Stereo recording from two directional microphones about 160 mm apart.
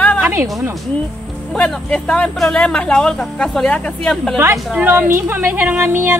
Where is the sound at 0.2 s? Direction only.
15° right (ahead or behind).